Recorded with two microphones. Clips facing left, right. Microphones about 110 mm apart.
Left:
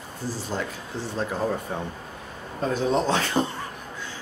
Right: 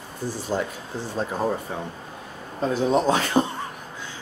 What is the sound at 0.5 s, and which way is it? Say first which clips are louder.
Speech: right 5 dB; 15° right (ahead or behind).